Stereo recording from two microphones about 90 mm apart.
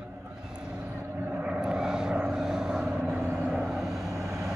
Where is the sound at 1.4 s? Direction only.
10° right (ahead or behind).